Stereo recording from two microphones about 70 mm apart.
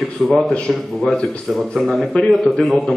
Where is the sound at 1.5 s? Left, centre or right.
Centre.